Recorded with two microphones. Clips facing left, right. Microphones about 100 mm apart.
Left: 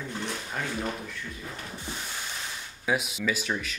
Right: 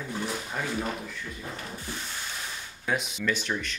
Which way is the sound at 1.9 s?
20° left (ahead or behind).